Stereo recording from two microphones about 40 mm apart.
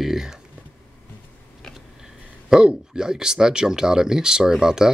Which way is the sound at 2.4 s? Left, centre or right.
Centre.